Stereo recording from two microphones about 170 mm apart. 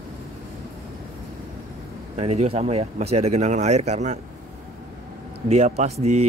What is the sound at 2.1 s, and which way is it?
Speech, 40° right (ahead or behind).